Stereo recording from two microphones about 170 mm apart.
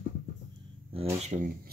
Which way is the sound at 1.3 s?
40° right (ahead or behind).